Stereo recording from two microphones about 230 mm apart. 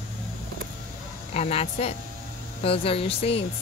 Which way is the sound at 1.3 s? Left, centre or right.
Left.